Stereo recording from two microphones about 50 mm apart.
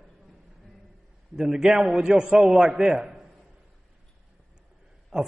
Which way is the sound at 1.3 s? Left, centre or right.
Centre.